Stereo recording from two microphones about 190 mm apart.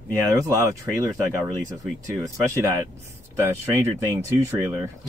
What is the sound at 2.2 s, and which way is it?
Speech, 15° right (ahead or behind).